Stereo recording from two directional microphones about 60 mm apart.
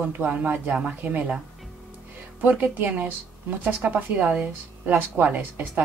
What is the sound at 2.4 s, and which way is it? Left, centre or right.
A woman's voice, right.